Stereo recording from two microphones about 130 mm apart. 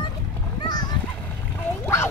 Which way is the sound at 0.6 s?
35° left (ahead or behind).